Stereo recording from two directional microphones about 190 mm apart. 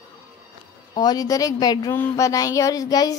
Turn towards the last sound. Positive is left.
turn(degrees=20)  # may be behind; listen again after turning